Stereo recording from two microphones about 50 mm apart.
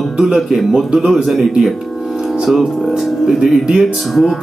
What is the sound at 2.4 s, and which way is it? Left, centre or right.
Speech, centre.